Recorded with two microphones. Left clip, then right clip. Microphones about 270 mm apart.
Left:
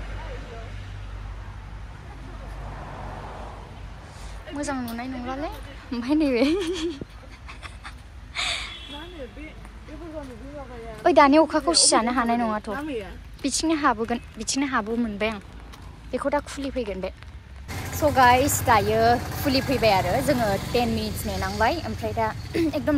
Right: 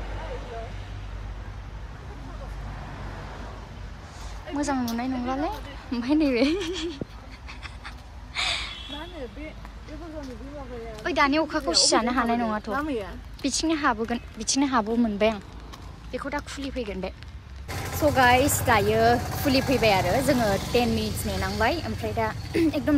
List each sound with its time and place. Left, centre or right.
0.0 s vehicle: right
4.6 s speech: centre
7.4 s a sound: centre
11.1 s speech: centre
17.8 s music: centre
18.1 s speech: centre